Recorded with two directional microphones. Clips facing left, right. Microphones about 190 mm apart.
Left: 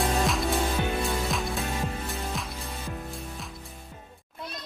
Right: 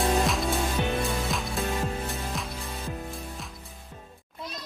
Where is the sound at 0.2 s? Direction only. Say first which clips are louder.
Even; centre (ahead or behind).